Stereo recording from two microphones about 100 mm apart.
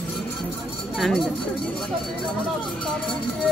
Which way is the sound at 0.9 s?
Centre (ahead or behind).